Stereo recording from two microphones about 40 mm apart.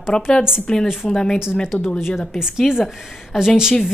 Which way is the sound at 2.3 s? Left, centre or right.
Centre.